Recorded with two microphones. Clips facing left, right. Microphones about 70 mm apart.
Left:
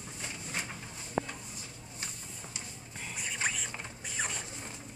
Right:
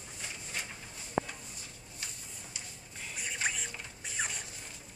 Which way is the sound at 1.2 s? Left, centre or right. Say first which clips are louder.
Even; right.